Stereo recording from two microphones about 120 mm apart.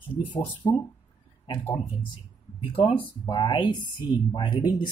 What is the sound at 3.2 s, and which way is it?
Speech, 40° left (ahead or behind).